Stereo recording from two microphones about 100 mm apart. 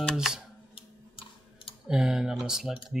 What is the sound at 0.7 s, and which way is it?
Tick-tock, 60° left (ahead or behind).